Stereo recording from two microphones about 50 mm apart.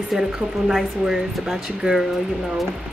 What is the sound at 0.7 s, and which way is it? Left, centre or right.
Speech, centre.